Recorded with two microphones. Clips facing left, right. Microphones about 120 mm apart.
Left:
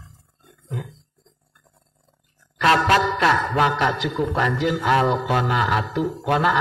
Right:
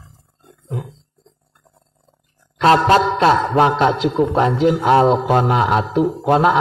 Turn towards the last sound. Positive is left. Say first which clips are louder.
# right 6 dB
turn(degrees=-30)  # may be behind; listen again after turning